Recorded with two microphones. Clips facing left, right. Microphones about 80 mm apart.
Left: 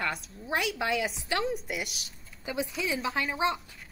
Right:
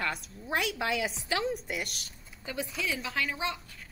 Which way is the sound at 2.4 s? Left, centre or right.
Centre.